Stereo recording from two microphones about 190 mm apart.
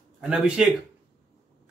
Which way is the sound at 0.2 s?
5° right (ahead or behind).